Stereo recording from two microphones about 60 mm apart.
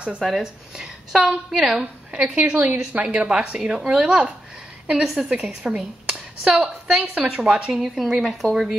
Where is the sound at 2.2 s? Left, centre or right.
Right.